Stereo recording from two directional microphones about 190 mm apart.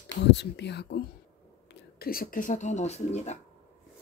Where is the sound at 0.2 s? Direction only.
65° left (ahead or behind); by 3.3 s 35° left (ahead or behind).